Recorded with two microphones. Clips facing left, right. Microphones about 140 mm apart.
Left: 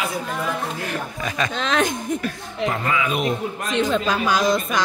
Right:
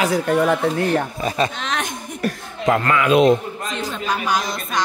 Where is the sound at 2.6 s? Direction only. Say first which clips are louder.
Right 5 dB; 85° right.